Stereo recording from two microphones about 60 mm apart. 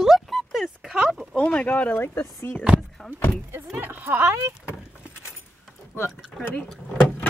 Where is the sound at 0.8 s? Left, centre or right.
Centre.